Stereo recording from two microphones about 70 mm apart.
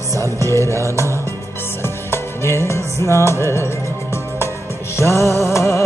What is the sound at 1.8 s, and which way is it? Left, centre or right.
Music, left.